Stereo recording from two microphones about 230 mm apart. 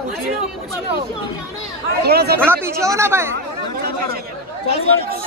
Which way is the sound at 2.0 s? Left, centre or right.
Right.